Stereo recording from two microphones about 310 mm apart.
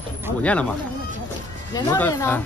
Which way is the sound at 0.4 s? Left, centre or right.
Centre.